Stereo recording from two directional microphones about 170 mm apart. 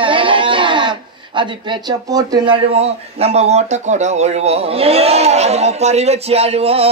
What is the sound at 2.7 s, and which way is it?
Speech, 35° right (ahead or behind).